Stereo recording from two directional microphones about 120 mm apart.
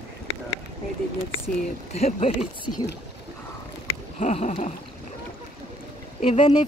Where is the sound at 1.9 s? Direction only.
60° left (ahead or behind).